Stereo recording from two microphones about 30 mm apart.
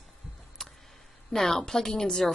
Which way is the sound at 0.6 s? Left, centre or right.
Centre.